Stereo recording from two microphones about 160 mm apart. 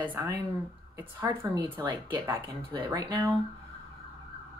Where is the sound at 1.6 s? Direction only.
25° right (ahead or behind).